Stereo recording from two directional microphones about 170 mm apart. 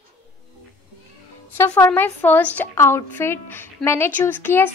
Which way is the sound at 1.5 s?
15° left (ahead or behind).